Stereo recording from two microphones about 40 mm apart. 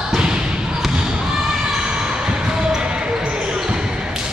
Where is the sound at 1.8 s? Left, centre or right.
Centre.